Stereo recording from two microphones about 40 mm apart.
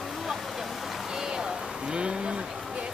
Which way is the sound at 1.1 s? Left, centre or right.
Centre.